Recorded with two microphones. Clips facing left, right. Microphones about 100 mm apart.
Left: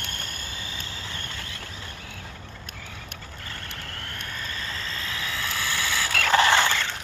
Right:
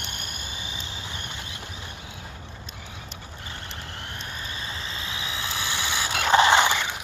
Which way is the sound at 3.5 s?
20° right (ahead or behind).